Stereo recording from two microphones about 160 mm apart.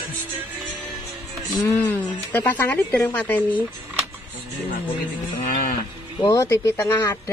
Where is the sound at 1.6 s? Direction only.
10° left (ahead or behind).